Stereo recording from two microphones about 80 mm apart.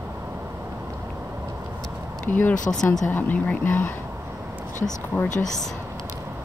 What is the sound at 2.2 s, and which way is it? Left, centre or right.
Speech, left.